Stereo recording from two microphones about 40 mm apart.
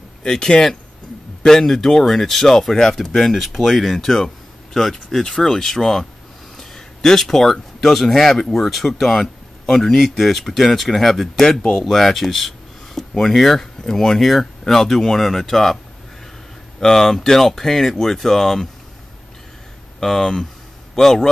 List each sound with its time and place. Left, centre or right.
0.2 s speech: left
5.2 s speech: centre
5.5 s speech: centre
9.0 s a sound: centre
9.9 s speech: centre
16.8 s speech: centre
20.0 s speech: centre